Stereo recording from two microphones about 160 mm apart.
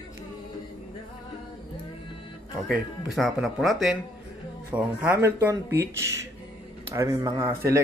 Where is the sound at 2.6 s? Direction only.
Centre (ahead or behind); by 7.8 s 20° right (ahead or behind).